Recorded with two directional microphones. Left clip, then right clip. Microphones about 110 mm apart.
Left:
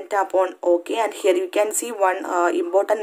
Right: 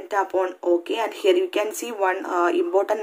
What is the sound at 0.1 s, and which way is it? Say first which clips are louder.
Speech: left 3 dB; 30° left (ahead or behind).